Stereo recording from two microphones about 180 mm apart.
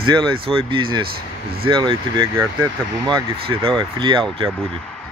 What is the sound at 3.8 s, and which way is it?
Speech, 25° right (ahead or behind).